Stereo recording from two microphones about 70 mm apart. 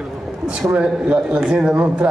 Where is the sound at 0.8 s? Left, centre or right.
Centre.